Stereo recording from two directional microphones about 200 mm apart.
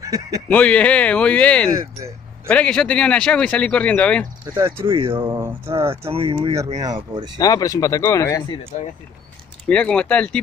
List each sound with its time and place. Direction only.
0.0 s speech: 20° right (ahead or behind)
0.5 s speech: 5° left (ahead or behind)
1.7 s speech: 15° right (ahead or behind)
2.4 s speech: 5° left (ahead or behind)
4.6 s speech: 20° right (ahead or behind)
5.4 s speech: 10° right (ahead or behind)
6.0 s speech: 30° right (ahead or behind)
7.3 s speech: 20° left (ahead or behind)
9.7 s speech: 5° left (ahead or behind)